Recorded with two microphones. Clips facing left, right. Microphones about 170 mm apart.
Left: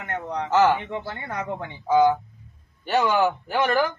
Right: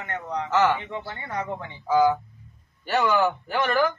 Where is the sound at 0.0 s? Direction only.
55° left (ahead or behind).